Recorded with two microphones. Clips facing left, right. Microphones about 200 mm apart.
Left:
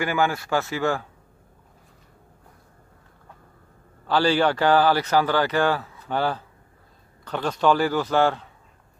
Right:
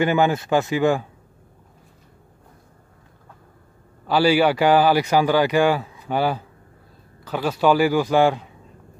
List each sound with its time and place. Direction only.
0.0 s speech: 20° right (ahead or behind)
4.1 s speech: 10° right (ahead or behind)